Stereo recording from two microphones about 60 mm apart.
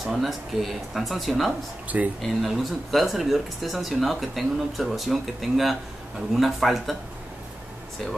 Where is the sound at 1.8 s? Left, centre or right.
Right.